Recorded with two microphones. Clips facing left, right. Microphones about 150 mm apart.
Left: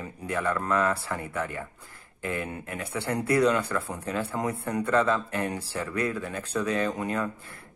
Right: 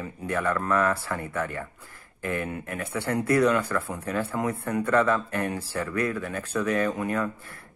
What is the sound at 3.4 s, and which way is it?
Speech, 30° left (ahead or behind).